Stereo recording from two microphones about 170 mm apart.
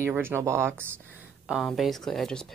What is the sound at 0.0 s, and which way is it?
Speech, 15° right (ahead or behind).